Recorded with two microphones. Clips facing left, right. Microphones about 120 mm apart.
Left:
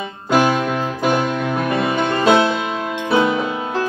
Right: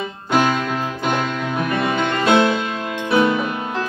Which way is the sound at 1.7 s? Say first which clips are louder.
Left 1 dB; 30° left (ahead or behind).